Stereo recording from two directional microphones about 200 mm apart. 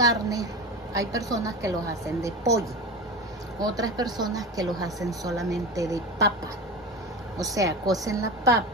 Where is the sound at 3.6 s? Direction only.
20° right (ahead or behind).